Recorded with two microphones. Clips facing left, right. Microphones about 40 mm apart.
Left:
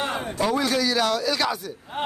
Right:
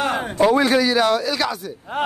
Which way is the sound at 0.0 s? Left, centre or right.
Right.